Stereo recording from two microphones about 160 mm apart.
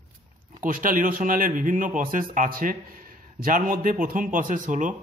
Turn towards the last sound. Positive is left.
turn(degrees=-50)  # may be behind; listen again after turning